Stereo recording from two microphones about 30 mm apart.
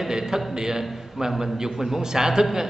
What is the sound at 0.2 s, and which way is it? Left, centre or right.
Speech, centre.